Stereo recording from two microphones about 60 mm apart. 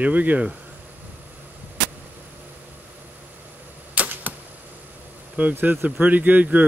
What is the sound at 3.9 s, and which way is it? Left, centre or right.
Arrow, right.